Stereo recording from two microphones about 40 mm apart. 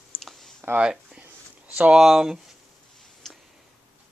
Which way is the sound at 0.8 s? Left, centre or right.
Centre.